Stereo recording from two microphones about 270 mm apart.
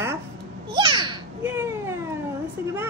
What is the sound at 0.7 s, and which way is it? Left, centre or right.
Babbling, centre.